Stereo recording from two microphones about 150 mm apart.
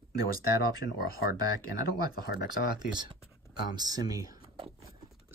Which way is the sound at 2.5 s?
30° right (ahead or behind).